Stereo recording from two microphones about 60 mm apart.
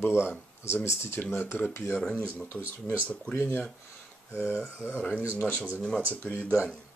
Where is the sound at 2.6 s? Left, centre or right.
Right.